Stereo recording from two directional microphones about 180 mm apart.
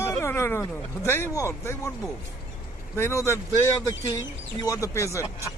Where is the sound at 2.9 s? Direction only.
15° left (ahead or behind).